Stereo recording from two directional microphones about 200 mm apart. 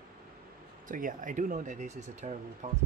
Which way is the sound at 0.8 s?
40° right (ahead or behind).